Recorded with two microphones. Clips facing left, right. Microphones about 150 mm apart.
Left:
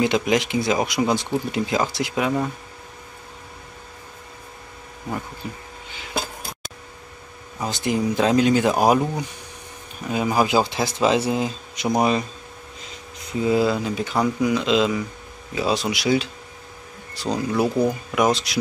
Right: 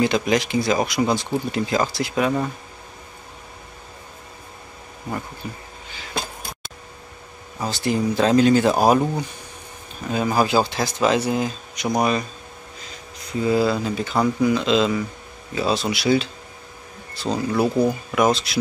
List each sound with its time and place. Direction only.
0.0 s speech: 20° left (ahead or behind)
7.6 s speech: 15° left (ahead or behind)
10.0 s speech: 15° left (ahead or behind)
13.4 s speech: 15° left (ahead or behind)